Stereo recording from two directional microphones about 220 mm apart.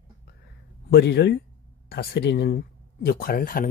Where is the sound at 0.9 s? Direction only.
50° left (ahead or behind).